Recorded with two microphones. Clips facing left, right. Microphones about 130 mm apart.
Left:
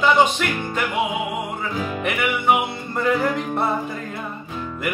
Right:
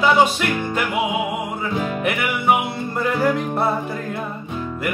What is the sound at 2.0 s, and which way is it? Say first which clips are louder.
Music: even; 5° right (ahead or behind).